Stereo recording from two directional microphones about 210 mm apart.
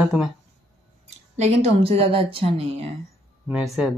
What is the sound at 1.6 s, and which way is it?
A woman's voice, 30° right (ahead or behind).